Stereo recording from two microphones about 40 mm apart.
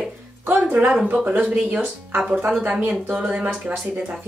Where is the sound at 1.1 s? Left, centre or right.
Right.